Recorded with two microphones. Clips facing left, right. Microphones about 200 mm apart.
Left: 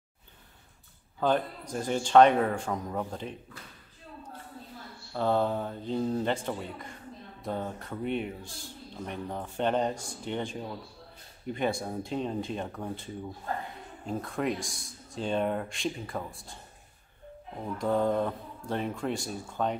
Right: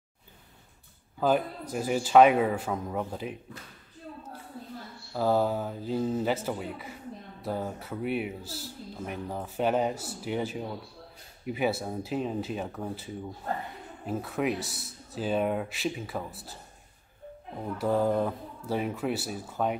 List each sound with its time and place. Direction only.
1.2 s a man's voice: 5° right (ahead or behind)
5.1 s speech: 5° right (ahead or behind)
17.7 s a man's voice: 5° right (ahead or behind)